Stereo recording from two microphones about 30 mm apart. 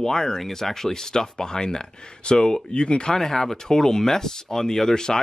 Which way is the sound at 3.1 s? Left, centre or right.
Centre.